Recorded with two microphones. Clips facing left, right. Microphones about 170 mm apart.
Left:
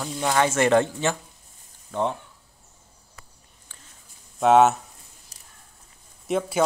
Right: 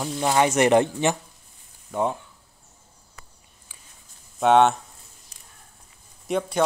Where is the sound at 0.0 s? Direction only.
15° right (ahead or behind).